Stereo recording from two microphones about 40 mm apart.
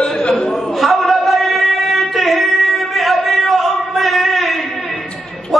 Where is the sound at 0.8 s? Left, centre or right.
Centre.